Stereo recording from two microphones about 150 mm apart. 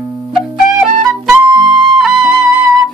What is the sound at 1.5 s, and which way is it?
Flute, 30° right (ahead or behind).